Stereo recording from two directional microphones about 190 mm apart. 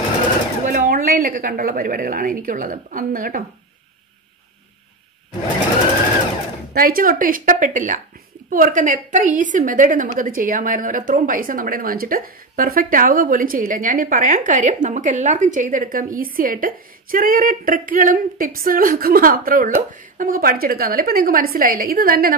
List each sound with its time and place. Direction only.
0.7 s a woman's voice: 45° right (ahead or behind)
6.7 s a woman's voice: 50° right (ahead or behind)